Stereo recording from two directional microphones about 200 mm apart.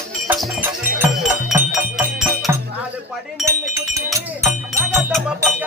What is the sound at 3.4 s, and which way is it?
Music, 15° right (ahead or behind).